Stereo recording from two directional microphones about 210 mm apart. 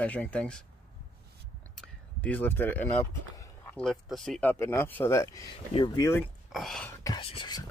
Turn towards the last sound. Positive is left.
turn(degrees=20)  # may be behind; listen again after turning